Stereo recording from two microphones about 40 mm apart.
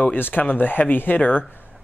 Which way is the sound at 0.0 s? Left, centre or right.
Left.